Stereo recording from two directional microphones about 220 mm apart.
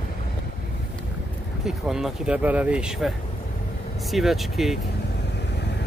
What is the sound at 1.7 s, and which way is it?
Speech, centre (ahead or behind).